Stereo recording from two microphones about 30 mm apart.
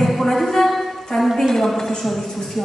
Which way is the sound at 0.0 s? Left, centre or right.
Centre.